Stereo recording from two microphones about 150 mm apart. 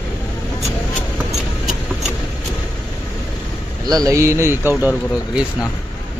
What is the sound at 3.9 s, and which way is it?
A man's voice, 25° right (ahead or behind).